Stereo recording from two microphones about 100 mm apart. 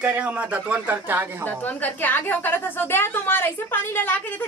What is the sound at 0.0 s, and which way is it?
A man's voice, 15° right (ahead or behind).